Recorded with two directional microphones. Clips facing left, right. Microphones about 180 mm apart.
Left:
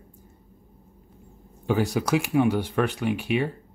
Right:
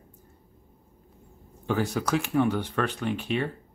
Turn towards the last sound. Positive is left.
turn(degrees=10)  # may be behind; listen again after turning